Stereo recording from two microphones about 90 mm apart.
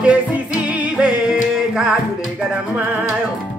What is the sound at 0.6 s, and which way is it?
Yodeling, 15° right (ahead or behind).